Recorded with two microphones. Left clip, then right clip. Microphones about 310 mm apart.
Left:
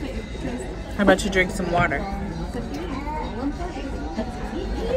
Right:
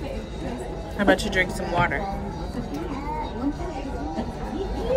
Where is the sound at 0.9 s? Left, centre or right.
Centre.